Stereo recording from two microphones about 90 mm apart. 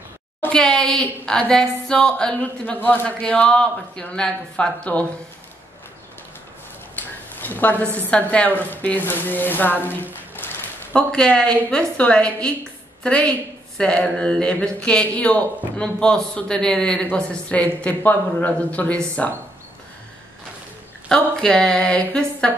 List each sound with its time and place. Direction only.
0.5 s a woman's voice: 10° left (ahead or behind)
7.0 s a sound: 20° left (ahead or behind)
8.1 s a woman's voice: 15° left (ahead or behind)
10.3 s a sound: 20° left (ahead or behind)
12.0 s a woman's voice: 15° left (ahead or behind)
21.1 s a woman's voice: 10° left (ahead or behind)